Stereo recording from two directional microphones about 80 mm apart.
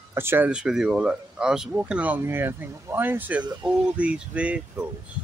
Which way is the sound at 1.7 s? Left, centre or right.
Centre.